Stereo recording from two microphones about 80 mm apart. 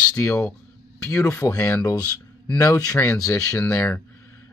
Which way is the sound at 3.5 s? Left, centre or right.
Left.